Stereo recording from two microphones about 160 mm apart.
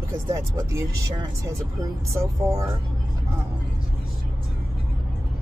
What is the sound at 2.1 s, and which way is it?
Speech, 20° right (ahead or behind).